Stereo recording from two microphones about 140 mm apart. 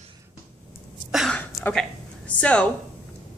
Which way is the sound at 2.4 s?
10° left (ahead or behind).